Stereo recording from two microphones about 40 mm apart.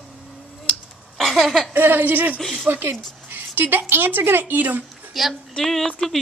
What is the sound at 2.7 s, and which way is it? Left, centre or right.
Speech, right.